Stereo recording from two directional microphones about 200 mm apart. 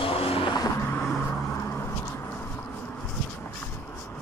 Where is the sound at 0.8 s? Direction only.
5° left (ahead or behind).